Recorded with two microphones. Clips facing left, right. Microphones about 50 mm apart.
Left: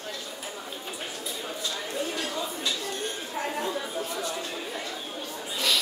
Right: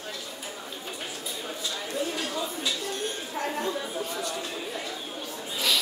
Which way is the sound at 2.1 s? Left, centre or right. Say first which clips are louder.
Even; centre.